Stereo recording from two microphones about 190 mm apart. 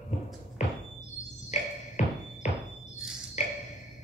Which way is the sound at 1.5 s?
40° left (ahead or behind).